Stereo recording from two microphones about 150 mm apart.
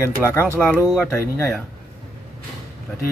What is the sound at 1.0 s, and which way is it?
Speech, 15° left (ahead or behind).